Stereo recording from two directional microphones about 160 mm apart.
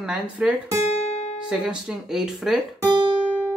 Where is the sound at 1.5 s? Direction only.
5° right (ahead or behind).